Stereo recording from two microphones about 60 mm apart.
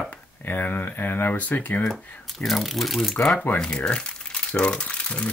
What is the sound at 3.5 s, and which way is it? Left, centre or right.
Speech, centre.